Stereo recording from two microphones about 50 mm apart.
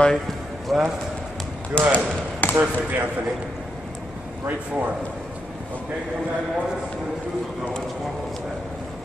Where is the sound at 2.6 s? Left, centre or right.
Right.